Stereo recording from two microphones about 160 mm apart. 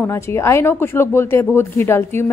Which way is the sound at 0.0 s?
15° left (ahead or behind).